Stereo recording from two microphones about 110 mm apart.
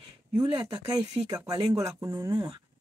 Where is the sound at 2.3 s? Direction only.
40° right (ahead or behind).